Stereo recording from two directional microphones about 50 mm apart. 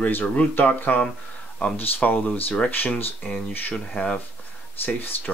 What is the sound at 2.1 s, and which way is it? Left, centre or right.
Speech, left.